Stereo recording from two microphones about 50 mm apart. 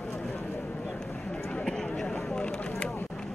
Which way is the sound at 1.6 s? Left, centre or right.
Centre.